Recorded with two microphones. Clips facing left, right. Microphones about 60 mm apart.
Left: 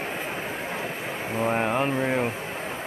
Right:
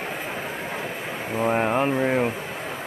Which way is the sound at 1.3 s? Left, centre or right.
Centre.